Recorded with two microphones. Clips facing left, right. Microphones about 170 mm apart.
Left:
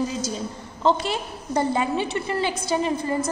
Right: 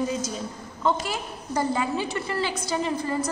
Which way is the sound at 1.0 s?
25° left (ahead or behind).